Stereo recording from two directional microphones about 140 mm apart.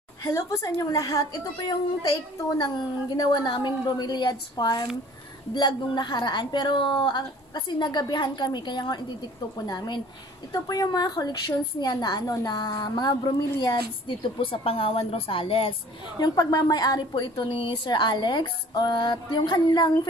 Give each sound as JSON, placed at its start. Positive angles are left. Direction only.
{"t": 0.2, "sound": "a woman's voice", "side_deg": 20}
{"t": 16.2, "sound": "a woman's voice", "side_deg": 30}